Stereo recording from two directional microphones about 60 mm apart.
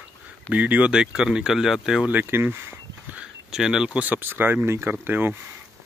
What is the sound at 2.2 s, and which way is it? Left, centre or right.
Speech, right.